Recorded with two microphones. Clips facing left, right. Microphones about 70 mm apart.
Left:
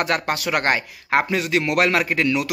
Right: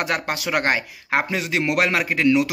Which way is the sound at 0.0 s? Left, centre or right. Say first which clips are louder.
Left 2 dB; centre.